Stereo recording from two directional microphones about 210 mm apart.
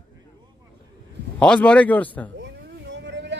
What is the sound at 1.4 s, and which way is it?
Speech, 5° left (ahead or behind).